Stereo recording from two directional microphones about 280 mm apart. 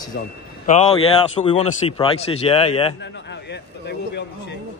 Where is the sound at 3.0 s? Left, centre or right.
Left.